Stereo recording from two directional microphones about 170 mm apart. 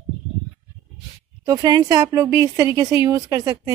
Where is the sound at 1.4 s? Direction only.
25° right (ahead or behind).